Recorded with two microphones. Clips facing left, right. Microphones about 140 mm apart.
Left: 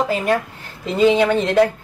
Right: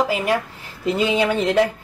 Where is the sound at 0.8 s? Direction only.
10° right (ahead or behind).